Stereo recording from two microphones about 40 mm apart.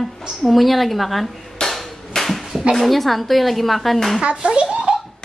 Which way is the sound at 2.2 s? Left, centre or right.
Centre.